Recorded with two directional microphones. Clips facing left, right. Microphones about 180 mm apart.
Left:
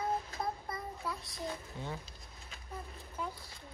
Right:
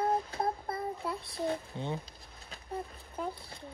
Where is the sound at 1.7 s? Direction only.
20° right (ahead or behind).